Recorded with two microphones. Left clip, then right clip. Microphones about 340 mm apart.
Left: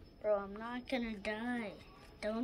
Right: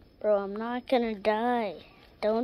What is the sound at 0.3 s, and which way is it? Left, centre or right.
Speech, centre.